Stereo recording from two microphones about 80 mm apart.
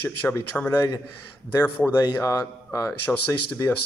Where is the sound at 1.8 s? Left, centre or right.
Centre.